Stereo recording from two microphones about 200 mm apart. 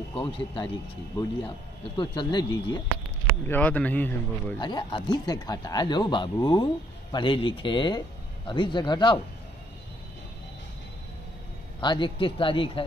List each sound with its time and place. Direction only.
0.1 s speech: 25° left (ahead or behind)
2.0 s speech: 20° left (ahead or behind)
3.3 s speech: 10° left (ahead or behind)
4.6 s speech: 20° left (ahead or behind)
11.8 s speech: 25° left (ahead or behind)